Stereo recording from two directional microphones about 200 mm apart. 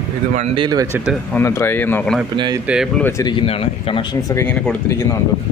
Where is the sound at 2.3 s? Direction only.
25° right (ahead or behind).